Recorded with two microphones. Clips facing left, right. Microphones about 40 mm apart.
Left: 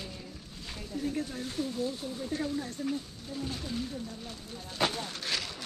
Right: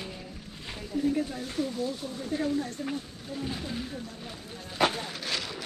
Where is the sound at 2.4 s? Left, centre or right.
Right.